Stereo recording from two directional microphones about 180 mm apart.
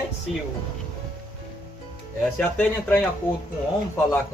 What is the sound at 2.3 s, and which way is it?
Speech, 10° left (ahead or behind).